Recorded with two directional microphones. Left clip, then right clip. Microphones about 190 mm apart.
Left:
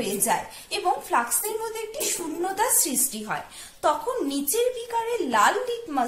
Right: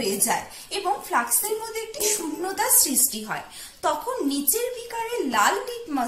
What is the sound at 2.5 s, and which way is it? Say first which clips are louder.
Speech: right 2 dB; 40° left (ahead or behind).